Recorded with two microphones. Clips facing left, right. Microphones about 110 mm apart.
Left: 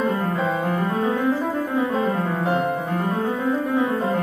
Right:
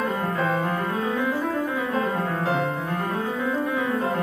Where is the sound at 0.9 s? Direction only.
25° left (ahead or behind).